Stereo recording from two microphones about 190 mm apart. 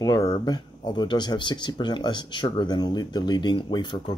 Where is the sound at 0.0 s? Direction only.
20° left (ahead or behind).